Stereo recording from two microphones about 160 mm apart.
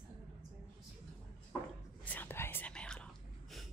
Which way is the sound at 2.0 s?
10° left (ahead or behind).